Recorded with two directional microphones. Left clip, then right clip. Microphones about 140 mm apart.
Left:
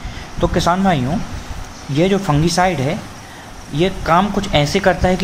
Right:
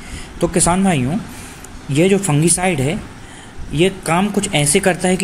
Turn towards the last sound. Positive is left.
turn(degrees=-15)  # may be behind; listen again after turning